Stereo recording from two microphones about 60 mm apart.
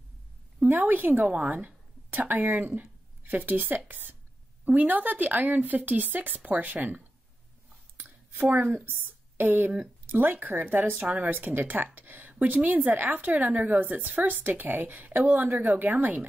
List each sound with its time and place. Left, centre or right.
0.7 s a woman's voice: right
8.0 s a sound: right
8.8 s a woman's voice: right